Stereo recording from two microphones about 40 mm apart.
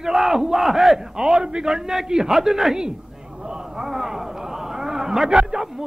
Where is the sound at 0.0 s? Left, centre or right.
Centre.